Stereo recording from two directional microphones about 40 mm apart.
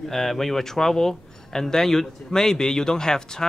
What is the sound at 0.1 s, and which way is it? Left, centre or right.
Speech, centre.